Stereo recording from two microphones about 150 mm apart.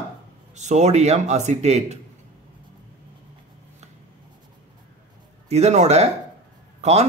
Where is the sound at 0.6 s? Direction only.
50° right (ahead or behind).